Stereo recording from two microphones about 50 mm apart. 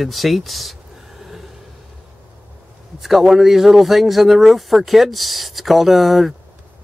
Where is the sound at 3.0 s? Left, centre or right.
Centre.